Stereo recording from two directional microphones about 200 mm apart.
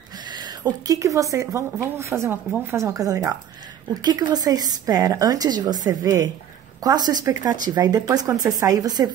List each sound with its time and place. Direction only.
0.3 s a woman's voice: 20° right (ahead or behind)